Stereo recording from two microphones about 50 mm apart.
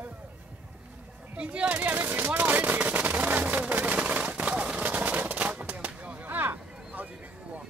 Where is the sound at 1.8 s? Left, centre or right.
Right.